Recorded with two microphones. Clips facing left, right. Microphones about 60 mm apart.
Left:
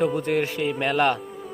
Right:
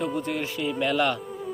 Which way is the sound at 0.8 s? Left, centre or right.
Left.